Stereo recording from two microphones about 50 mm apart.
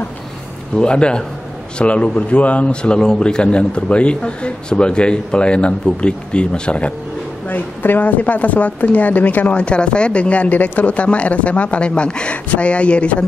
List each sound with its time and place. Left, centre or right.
0.7 s a man's voice: centre
7.4 s speech: left
9.6 s a man's voice: left